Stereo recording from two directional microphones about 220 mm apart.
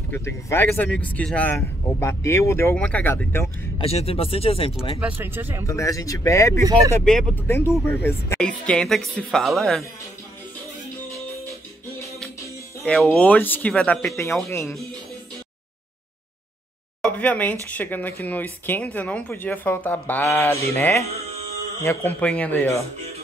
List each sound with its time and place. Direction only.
0.1 s speech: 10° left (ahead or behind)
3.7 s speech: 25° left (ahead or behind)
4.9 s speech: 10° right (ahead or behind)
5.7 s speech: 15° left (ahead or behind)
12.8 s speech: centre (ahead or behind)
17.0 s speech: 5° left (ahead or behind)